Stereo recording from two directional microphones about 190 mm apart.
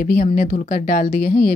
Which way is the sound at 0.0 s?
50° left (ahead or behind).